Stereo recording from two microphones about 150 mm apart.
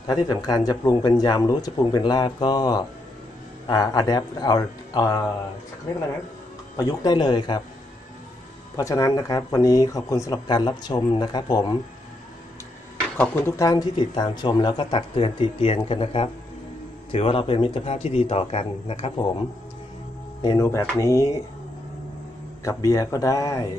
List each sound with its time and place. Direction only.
0.0 s speech: 25° left (ahead or behind)
6.8 s speech: 25° left (ahead or behind)
8.7 s speech: 20° left (ahead or behind)
13.2 s speech: 15° left (ahead or behind); by 19.1 s 40° left (ahead or behind)
20.4 s speech: 20° left (ahead or behind)
22.6 s speech: 20° left (ahead or behind)